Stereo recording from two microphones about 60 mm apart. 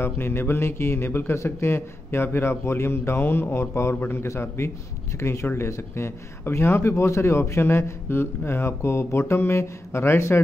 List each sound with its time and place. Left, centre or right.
0.0 s a man's voice: left